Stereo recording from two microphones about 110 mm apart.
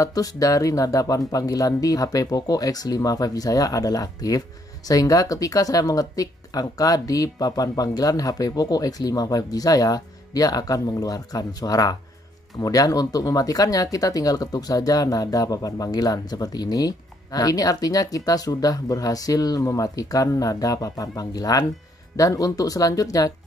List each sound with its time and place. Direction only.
0.0 s speech: 35° left (ahead or behind)